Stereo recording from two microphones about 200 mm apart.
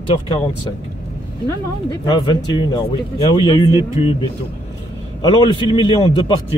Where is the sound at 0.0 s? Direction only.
25° left (ahead or behind).